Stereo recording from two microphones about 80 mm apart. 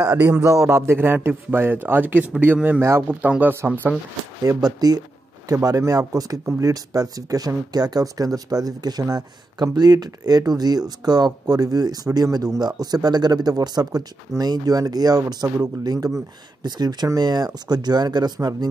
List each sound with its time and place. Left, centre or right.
0.1 s a man's voice: right
0.7 s a man's voice: right
4.4 s speech: right